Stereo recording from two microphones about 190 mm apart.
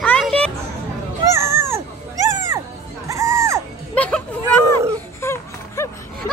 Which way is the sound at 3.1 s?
15° right (ahead or behind).